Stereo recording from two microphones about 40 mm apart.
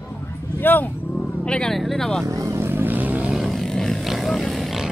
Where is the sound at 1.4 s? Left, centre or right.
Left.